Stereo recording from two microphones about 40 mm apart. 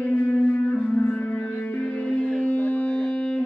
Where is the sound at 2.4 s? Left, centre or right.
Left.